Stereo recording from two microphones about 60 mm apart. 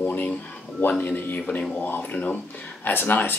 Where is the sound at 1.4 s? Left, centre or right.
Centre.